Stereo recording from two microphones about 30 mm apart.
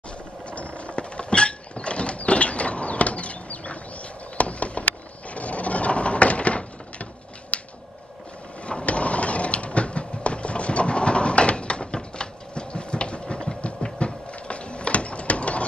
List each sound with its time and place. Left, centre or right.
0.5 s mechanisms: left
4.4 s a sound: left
8.6 s vehicle: left
13.9 s mechanisms: left